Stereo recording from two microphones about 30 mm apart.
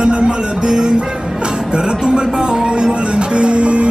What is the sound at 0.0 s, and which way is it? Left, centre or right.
Music, right.